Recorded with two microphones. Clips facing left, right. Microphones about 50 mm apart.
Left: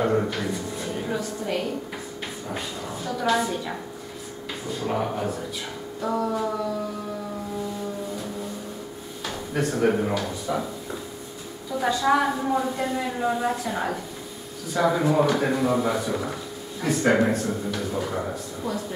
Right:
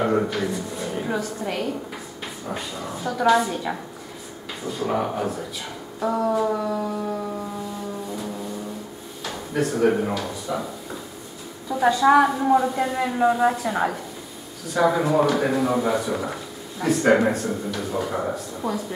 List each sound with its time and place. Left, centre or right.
0.0 s a sound: centre
1.0 s a man's voice: centre
2.5 s a man's voice: centre
4.6 s a man's voice: centre
9.2 s speech: centre
11.8 s a man's voice: centre
18.1 s a man's voice: centre